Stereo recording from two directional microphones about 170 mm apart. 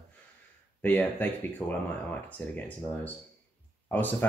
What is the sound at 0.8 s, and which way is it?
Speech, 10° left (ahead or behind).